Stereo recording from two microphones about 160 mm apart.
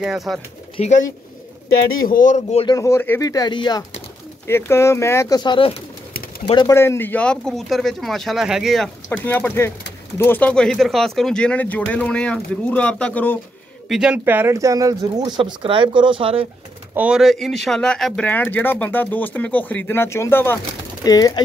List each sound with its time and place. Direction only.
0.0 s speech: centre (ahead or behind)
2.0 s speech: 55° left (ahead or behind)
2.6 s speech: 20° left (ahead or behind)
4.5 s speech: 15° left (ahead or behind)
5.4 s speech: 30° left (ahead or behind)
6.7 s speech: 15° left (ahead or behind)
13.8 s speech: 5° right (ahead or behind); by 16.4 s 35° right (ahead or behind)
16.9 s speech: 5° right (ahead or behind); by 20.6 s 15° left (ahead or behind)
21.0 s speech: 25° left (ahead or behind)